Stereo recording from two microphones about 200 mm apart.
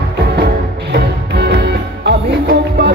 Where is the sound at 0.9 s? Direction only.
55° right (ahead or behind).